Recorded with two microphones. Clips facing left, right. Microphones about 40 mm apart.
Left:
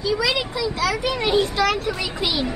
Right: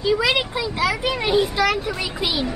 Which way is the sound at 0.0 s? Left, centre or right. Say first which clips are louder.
Right 2 dB; right.